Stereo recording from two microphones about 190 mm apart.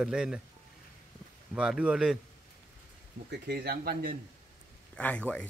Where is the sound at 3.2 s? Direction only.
60° right (ahead or behind).